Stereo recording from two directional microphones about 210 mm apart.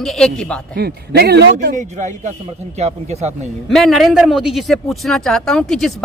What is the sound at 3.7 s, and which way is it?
A man's voice, centre (ahead or behind).